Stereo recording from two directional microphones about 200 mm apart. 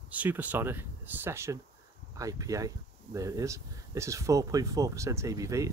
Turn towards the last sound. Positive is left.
turn(degrees=-15)  # may be behind; listen again after turning